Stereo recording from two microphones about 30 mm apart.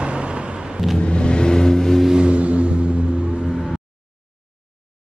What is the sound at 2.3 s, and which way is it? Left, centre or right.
Vehicle, right.